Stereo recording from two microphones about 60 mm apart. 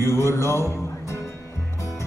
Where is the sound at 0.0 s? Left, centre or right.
Left.